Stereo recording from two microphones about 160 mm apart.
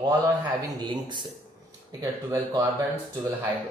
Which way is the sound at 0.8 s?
25° right (ahead or behind).